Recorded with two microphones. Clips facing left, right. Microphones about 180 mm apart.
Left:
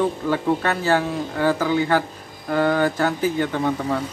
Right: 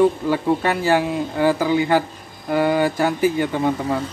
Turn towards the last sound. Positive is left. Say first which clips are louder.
# right 2 dB
turn(degrees=-10)  # may be behind; listen again after turning